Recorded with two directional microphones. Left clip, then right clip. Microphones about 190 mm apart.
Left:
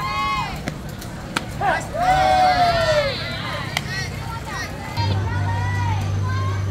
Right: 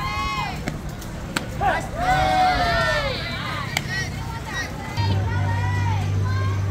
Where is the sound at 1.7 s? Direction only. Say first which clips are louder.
Left 3 dB; 45° left (ahead or behind).